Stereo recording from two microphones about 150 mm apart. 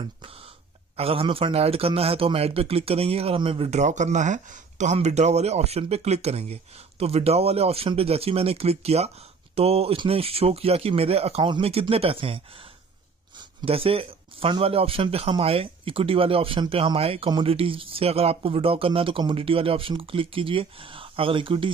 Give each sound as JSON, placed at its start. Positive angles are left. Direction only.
{"t": 0.9, "sound": "a man's voice", "side_deg": -40}
{"t": 13.6, "sound": "a man's voice", "side_deg": -40}